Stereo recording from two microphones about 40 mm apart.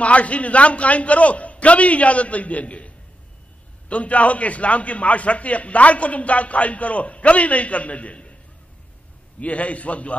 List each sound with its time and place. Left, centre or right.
0.0 s a man's voice: left
3.9 s a man's voice: left
9.4 s a man's voice: left